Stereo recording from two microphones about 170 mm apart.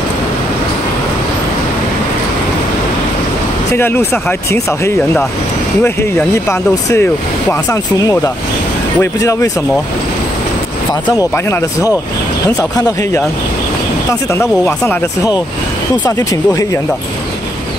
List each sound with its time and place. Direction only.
3.7 s speech: 15° left (ahead or behind)
11.1 s speech: 15° left (ahead or behind)
14.3 s speech: 15° left (ahead or behind)